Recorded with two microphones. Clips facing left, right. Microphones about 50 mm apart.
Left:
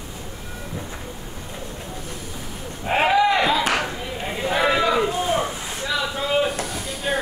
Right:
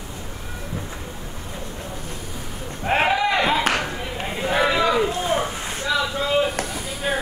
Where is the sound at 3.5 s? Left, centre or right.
Right.